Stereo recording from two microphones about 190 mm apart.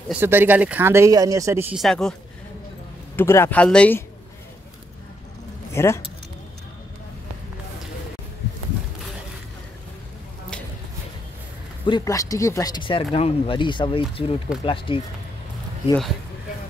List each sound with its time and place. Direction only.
0.1 s speech: 10° right (ahead or behind)
1.8 s speech: centre (ahead or behind)
3.2 s speech: 10° left (ahead or behind)
5.7 s speech: 15° left (ahead or behind)
11.8 s speech: 20° left (ahead or behind)